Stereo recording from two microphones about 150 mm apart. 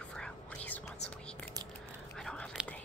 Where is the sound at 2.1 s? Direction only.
5° left (ahead or behind).